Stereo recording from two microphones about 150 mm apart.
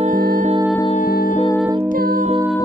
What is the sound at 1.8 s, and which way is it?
Music, 70° right (ahead or behind).